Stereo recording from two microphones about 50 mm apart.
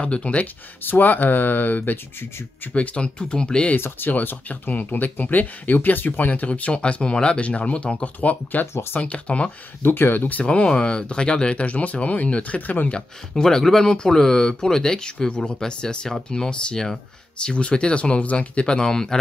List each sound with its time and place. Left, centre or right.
0.0 s speech: left
0.8 s speech: left
2.7 s speech: left
3.7 s speech: left
9.8 s speech: left
10.4 s speech: left
13.3 s speech: centre